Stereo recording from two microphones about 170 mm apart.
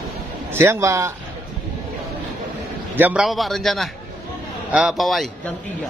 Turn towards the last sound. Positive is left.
turn(degrees=0)  # may be behind; listen again after turning